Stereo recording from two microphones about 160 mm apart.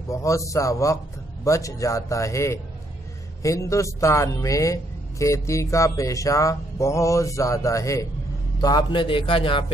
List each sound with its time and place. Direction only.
0.1 s a man's voice: 20° left (ahead or behind)